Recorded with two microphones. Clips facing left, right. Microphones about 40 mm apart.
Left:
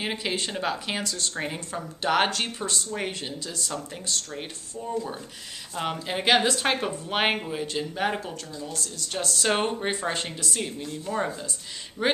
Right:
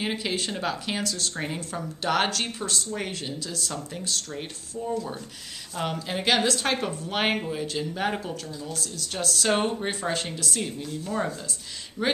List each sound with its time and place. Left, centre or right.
0.0 s a woman's voice: centre